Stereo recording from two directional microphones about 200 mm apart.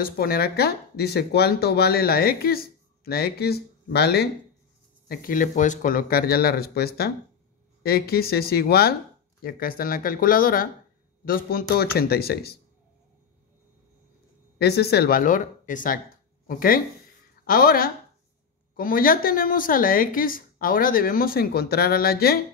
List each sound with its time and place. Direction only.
0.0 s speech: 50° left (ahead or behind)
14.6 s speech: 55° left (ahead or behind)